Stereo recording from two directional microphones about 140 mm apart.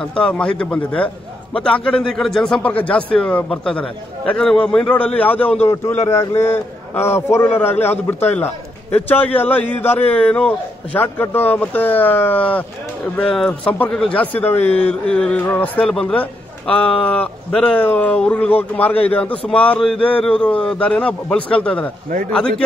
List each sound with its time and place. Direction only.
0.0 s a man's voice: 5° left (ahead or behind)